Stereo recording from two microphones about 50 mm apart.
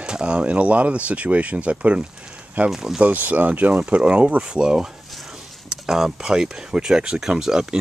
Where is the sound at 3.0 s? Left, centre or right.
Right.